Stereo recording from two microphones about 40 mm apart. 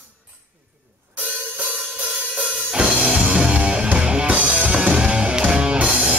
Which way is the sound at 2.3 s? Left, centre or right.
Right.